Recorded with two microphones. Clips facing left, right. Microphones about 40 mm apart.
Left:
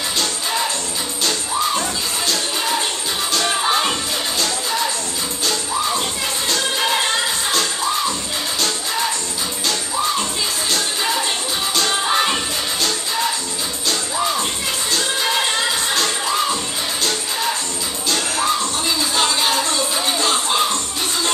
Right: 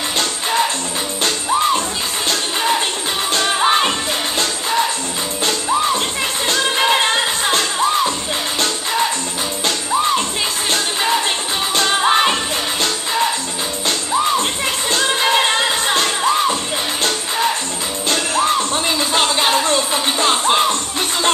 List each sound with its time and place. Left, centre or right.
0.2 s music: right
3.4 s music: right
10.7 s music: right
14.4 s music: right
18.0 s music: right